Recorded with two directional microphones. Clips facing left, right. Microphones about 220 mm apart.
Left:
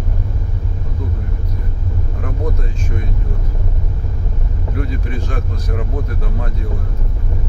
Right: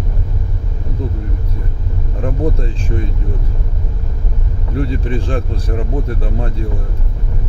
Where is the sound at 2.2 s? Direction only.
30° right (ahead or behind).